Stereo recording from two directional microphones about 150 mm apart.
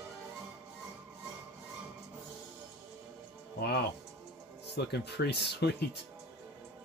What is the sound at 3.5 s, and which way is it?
Speech, 90° left.